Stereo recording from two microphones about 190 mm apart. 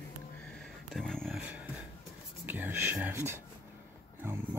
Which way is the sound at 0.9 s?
5° left (ahead or behind).